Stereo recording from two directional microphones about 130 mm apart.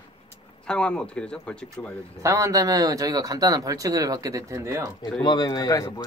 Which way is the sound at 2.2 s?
25° right (ahead or behind).